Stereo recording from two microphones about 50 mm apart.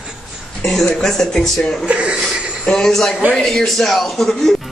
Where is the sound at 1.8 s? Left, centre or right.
Right.